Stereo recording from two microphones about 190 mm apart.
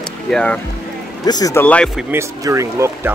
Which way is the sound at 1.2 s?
20° left (ahead or behind).